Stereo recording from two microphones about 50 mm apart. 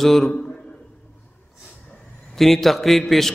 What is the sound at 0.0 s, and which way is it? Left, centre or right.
Speech, centre.